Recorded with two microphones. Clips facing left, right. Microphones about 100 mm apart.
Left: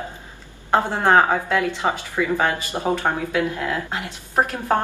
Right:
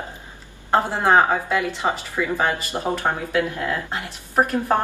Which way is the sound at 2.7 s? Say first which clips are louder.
Left 1 dB; 10° left (ahead or behind).